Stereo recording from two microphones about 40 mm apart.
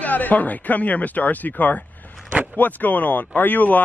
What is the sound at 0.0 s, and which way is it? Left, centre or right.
Speech, left.